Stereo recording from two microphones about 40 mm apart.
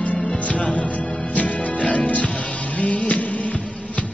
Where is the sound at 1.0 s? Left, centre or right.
Centre.